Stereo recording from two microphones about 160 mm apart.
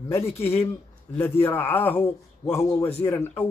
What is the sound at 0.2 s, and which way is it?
Speech, 40° left (ahead or behind).